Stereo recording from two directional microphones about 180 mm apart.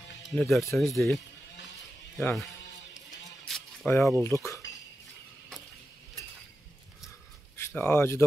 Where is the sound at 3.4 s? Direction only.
5° left (ahead or behind).